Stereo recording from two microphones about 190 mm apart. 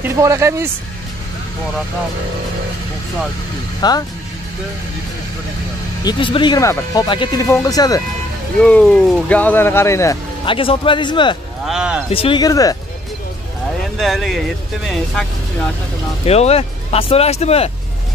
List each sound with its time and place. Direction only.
0.0 s speech: 15° right (ahead or behind)
3.8 s speech: 20° left (ahead or behind)
6.0 s speech: 25° left (ahead or behind)
8.6 s speech: 5° left (ahead or behind)
10.4 s speech: 25° left (ahead or behind)
11.6 s speech: 5° right (ahead or behind)
12.1 s speech: 30° left (ahead or behind)
13.9 s speech: centre (ahead or behind)
16.3 s speech: 35° left (ahead or behind)